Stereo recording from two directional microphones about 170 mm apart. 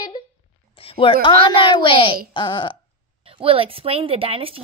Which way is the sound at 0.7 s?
35° left (ahead or behind).